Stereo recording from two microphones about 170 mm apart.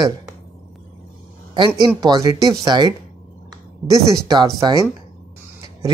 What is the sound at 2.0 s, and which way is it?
Speech, 20° right (ahead or behind).